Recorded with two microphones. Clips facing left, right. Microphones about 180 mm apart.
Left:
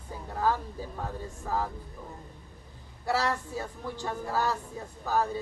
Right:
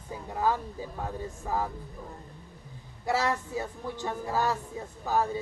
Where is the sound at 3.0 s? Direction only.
20° right (ahead or behind).